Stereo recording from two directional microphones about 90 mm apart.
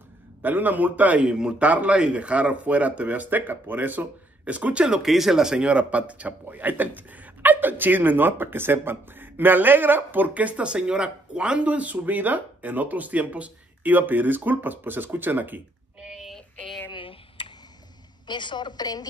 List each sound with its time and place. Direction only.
0.4 s a man's voice: 20° right (ahead or behind)
16.0 s child singing: 5° right (ahead or behind)
16.5 s a sound: centre (ahead or behind)
16.9 s finger snapping: 75° left (ahead or behind)
18.2 s a woman's voice: 60° left (ahead or behind)